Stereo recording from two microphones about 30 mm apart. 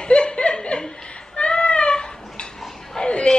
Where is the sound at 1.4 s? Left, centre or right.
Left.